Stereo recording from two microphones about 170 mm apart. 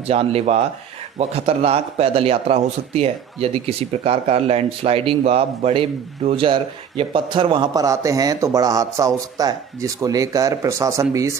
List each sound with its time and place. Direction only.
0.0 s a man's voice: 35° right (ahead or behind); by 11.3 s 20° right (ahead or behind)